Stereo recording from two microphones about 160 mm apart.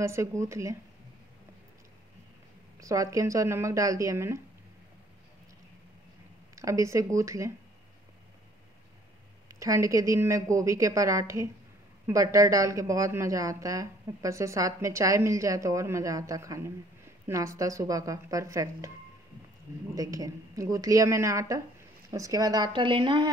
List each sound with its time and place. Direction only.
0.0 s speech: 15° right (ahead or behind)
2.8 s a woman's voice: 20° right (ahead or behind)
6.5 s a woman's voice: 20° right (ahead or behind)
9.5 s a woman's voice: 20° right (ahead or behind)
20.0 s a woman's voice: 20° right (ahead or behind)